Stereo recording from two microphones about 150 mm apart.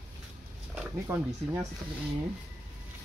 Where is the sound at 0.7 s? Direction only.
10° right (ahead or behind).